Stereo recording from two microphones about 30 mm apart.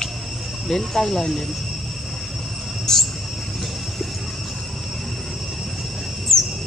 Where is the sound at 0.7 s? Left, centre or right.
Centre.